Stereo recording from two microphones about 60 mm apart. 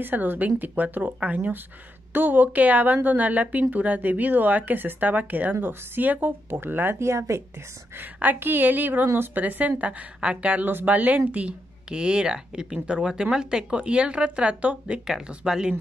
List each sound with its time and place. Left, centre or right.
0.0 s speech: right
7.0 s speech: right
8.0 s speech: right
9.4 s speech: right
15.0 s speech: centre